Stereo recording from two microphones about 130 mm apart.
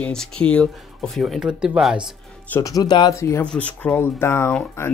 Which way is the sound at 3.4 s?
10° left (ahead or behind).